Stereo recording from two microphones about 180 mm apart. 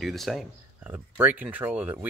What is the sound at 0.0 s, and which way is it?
Speech, centre (ahead or behind).